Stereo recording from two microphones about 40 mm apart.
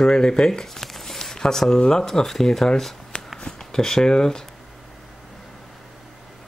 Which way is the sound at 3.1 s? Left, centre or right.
Left.